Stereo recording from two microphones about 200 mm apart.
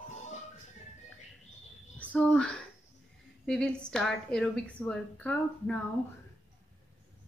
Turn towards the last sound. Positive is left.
turn(degrees=5)  # may be behind; listen again after turning